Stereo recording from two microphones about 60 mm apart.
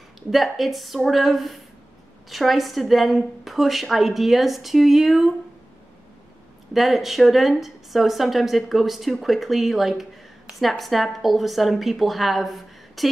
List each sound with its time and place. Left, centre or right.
0.3 s a woman's voice: centre
6.7 s a woman's voice: centre